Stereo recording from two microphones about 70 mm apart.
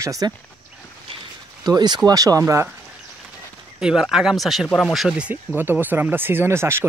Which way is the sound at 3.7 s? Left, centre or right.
Centre.